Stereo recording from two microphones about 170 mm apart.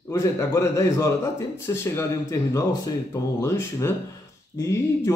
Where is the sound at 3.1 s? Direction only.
15° left (ahead or behind).